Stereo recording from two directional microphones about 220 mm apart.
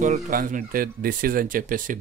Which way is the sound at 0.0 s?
35° right (ahead or behind).